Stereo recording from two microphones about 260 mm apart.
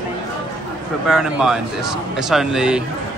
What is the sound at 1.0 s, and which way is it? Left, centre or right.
Speech, centre.